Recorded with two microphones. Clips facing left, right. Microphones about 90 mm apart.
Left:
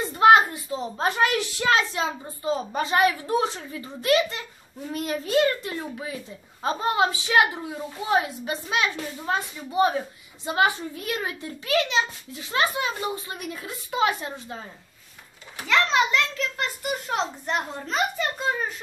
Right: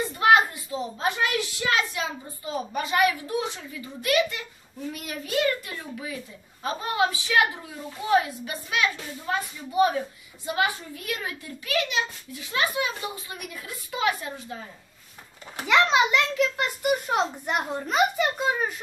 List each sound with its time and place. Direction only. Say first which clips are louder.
0.2 s a child's voice: left 4 dB; 30° left (ahead or behind)
1.8 s a woman's voice: left 2 dB; 30° left (ahead or behind)
15.6 s a child's voice: right 1 dB; 15° right (ahead or behind)